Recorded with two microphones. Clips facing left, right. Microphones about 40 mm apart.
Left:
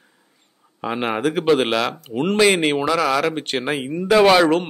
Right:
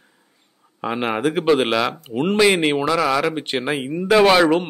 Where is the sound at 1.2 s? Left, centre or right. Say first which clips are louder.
Even; centre.